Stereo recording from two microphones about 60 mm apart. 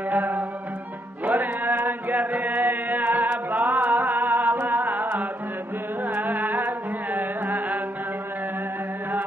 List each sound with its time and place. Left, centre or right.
0.1 s music: right
1.2 s chant: right
4.6 s music: right